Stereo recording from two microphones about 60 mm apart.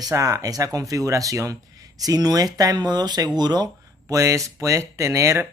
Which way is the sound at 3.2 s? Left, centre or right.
Right.